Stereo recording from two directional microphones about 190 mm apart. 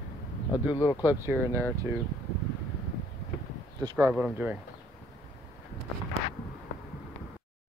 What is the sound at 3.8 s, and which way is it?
Speech, 15° right (ahead or behind).